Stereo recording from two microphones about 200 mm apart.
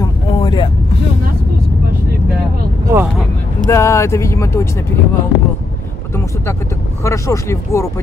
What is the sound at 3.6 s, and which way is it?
Speech, 15° left (ahead or behind).